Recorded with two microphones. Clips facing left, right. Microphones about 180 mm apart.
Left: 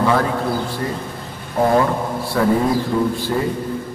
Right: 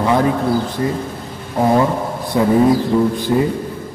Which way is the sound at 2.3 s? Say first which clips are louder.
Right 4 dB; 20° right (ahead or behind).